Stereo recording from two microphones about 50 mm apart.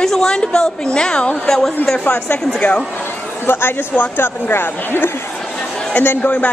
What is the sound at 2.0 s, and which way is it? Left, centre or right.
Speech, left.